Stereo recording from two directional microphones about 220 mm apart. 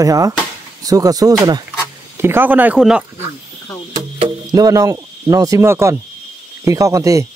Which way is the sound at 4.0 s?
15° right (ahead or behind).